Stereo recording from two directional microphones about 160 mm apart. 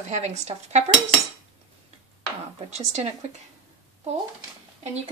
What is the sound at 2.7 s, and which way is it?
Speech, 45° right (ahead or behind).